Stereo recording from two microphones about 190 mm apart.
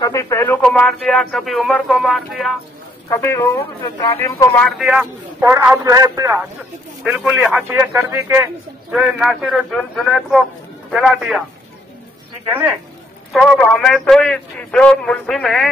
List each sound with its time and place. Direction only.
0.0 s speech: 15° left (ahead or behind); by 2.5 s centre (ahead or behind)
3.1 s speech: 15° left (ahead or behind)
4.6 s speech: centre (ahead or behind)
5.4 s a man's voice: 15° right (ahead or behind)
7.0 s a man's voice: 5° right (ahead or behind)
8.9 s speech: centre (ahead or behind)
13.3 s speech: centre (ahead or behind)